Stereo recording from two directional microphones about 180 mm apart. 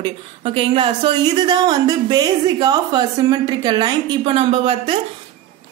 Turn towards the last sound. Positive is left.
turn(degrees=-30)  # may be behind; listen again after turning